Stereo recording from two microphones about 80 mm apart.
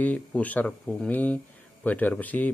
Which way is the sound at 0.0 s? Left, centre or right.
Centre.